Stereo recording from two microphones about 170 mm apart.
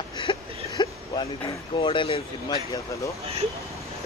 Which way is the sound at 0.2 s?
30° left (ahead or behind).